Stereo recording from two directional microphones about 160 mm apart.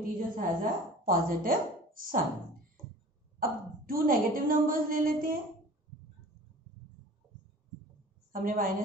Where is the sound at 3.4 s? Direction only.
60° right (ahead or behind).